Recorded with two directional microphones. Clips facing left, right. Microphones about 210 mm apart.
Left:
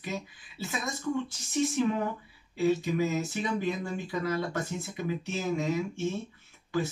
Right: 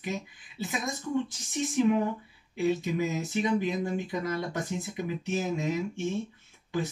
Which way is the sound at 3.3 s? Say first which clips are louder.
Right 3 dB; 15° right (ahead or behind).